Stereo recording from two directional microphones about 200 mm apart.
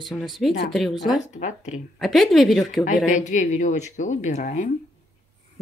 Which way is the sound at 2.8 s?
40° left (ahead or behind).